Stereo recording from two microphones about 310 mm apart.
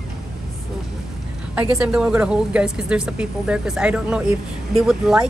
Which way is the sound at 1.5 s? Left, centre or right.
Centre.